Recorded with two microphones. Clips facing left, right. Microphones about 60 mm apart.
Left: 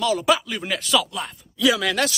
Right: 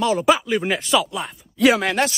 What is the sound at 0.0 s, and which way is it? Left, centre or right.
Speech, right.